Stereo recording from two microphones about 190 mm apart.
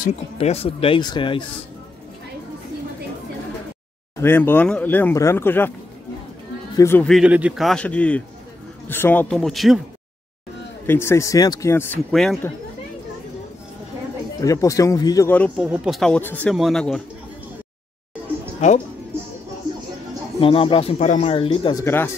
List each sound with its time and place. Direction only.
0.4 s speech: 30° left (ahead or behind)
4.2 s speech: 10° left (ahead or behind)
6.8 s a man's voice: 10° left (ahead or behind)
10.9 s speech: 15° left (ahead or behind)
12.1 s a man's voice: centre (ahead or behind)
14.4 s speech: 15° left (ahead or behind)
15.5 s a man's voice: 5° right (ahead or behind)
20.3 s speech: 30° left (ahead or behind)
21.8 s speech: 15° left (ahead or behind)